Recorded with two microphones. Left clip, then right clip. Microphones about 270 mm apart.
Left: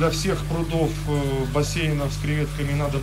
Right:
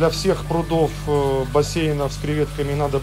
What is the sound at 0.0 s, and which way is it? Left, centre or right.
Speech, centre.